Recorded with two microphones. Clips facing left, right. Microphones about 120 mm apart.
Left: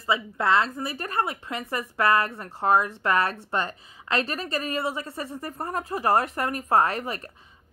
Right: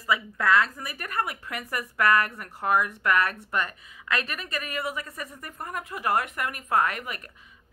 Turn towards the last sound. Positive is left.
turn(degrees=30)  # may be behind; listen again after turning